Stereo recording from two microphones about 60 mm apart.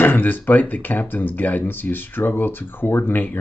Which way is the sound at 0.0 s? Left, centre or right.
Left.